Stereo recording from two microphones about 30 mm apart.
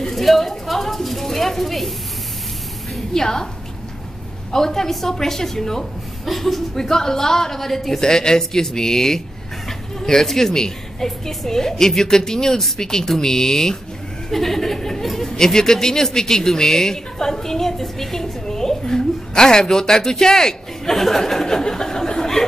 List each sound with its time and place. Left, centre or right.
0.1 s a sound: centre
3.1 s a woman's voice: centre
4.5 s speech: centre
6.8 s speech: centre
8.0 s speech: left
20.9 s speech: centre